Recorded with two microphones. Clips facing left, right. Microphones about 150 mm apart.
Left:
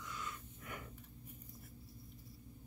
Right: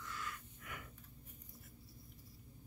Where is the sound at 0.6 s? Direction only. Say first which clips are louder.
Left 3 dB; 30° left (ahead or behind).